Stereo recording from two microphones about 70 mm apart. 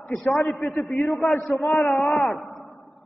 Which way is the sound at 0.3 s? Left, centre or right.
Centre.